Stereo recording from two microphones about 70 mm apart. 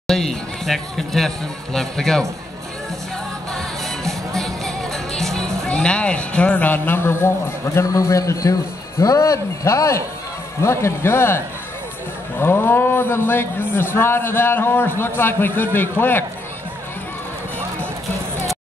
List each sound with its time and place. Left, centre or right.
0.0 s speech: centre
4.4 s music: centre
5.6 s speech: centre; by 7.8 s left
7.8 s a man's voice: left